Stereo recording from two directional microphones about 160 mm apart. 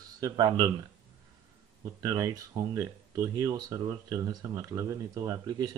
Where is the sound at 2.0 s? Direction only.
20° right (ahead or behind).